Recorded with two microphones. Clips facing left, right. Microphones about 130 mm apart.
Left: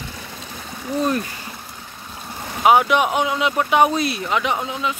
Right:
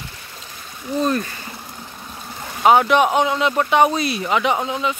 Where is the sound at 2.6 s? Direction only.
5° left (ahead or behind).